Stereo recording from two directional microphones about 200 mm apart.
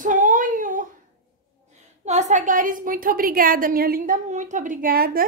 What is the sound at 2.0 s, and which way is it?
A woman's voice, 35° right (ahead or behind).